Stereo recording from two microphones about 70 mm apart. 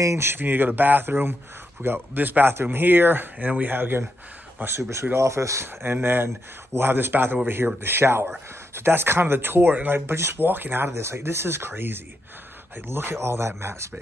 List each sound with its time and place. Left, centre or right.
0.0 s speech: right
10.9 s speech: right